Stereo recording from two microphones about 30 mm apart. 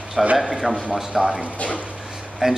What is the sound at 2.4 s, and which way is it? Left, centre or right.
Speech, right.